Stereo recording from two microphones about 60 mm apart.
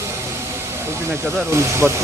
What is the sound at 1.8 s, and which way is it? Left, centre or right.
Speech, right.